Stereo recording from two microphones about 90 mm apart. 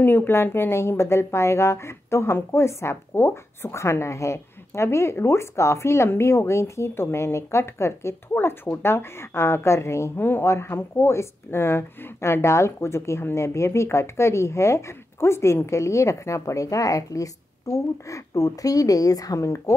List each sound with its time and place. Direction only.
0.0 s speech: 20° left (ahead or behind)